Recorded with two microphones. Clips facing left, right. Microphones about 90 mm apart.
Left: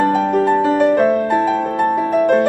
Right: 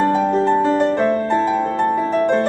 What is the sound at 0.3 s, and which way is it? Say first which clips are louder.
Music: left 1 dB; 55° left (ahead or behind).